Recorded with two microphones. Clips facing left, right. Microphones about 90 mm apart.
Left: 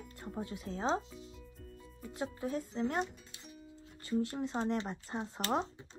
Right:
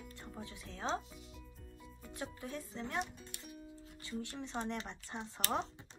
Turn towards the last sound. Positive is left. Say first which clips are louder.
# left 5 dB
turn(degrees=35)  # may be behind; listen again after turning